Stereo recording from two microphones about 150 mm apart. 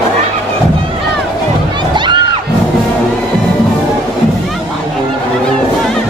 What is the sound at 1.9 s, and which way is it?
Crowd, 30° right (ahead or behind).